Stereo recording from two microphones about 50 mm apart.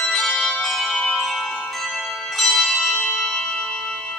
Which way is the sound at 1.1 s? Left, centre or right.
Centre.